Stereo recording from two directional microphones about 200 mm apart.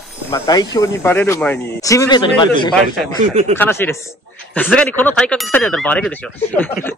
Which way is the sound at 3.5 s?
10° left (ahead or behind).